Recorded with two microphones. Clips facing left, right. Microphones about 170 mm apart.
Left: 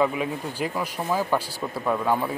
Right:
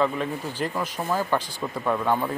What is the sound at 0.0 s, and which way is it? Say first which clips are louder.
Speech: left 1 dB; 10° left (ahead or behind).